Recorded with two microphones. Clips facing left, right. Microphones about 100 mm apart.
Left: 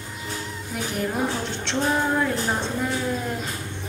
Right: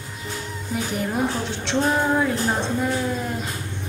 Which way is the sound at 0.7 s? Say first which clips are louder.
Right 2 dB; centre (ahead or behind).